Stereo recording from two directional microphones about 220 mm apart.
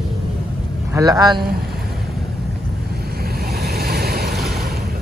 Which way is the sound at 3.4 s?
45° right (ahead or behind).